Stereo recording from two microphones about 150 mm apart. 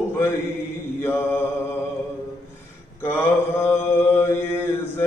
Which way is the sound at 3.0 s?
15° left (ahead or behind).